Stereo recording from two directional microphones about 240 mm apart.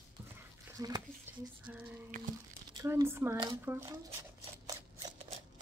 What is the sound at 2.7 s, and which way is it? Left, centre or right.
Speech, centre.